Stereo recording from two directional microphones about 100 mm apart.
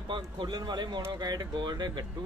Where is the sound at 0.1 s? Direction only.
50° right (ahead or behind).